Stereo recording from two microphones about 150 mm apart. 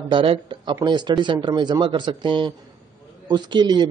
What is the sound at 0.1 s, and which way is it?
A man's voice, 35° right (ahead or behind).